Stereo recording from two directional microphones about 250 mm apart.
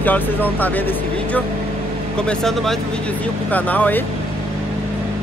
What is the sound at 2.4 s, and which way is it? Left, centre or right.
Speech, centre.